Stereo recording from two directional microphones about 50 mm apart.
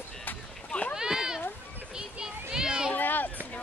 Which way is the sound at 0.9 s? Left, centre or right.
Centre.